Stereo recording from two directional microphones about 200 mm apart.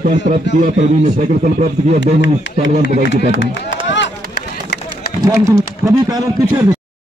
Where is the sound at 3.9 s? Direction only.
60° left (ahead or behind).